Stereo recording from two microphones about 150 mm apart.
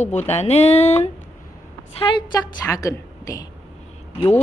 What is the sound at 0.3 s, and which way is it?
Speech, 45° left (ahead or behind).